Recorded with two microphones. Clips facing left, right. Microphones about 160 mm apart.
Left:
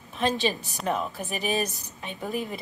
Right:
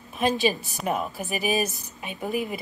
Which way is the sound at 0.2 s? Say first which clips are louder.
Right 3 dB; 15° right (ahead or behind).